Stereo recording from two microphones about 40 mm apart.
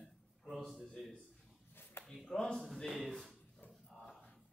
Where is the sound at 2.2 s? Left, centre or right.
Centre.